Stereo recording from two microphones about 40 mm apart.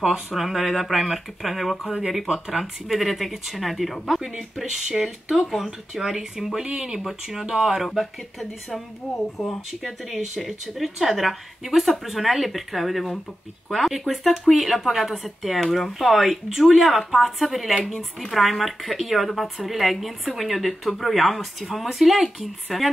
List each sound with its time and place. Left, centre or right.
0.0 s speech: centre
7.0 s speech: centre